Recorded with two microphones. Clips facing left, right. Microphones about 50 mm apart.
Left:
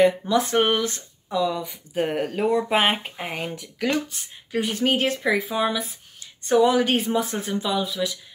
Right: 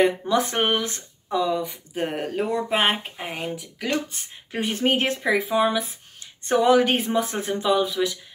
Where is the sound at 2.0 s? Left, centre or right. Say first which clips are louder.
Left 2 dB; centre.